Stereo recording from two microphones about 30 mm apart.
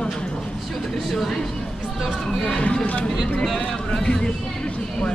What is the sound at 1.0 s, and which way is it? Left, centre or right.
Speech, centre.